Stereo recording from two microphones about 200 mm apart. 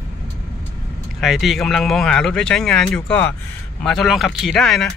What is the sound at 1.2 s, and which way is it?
Speech, centre (ahead or behind).